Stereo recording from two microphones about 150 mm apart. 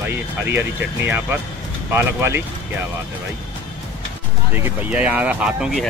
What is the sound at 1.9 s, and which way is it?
Speech, 15° right (ahead or behind).